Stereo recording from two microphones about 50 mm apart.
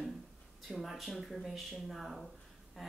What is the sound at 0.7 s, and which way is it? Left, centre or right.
Speech, centre.